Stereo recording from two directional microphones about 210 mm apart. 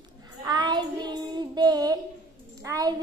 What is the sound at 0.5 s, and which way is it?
Child singing, 20° right (ahead or behind).